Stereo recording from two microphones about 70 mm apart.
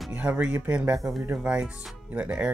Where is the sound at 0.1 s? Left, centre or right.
Right.